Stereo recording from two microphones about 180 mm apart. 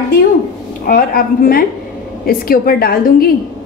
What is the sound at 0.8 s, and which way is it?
A woman's voice, 50° left (ahead or behind).